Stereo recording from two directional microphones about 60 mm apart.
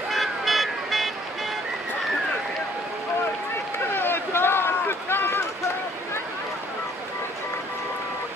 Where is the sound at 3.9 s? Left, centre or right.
Left.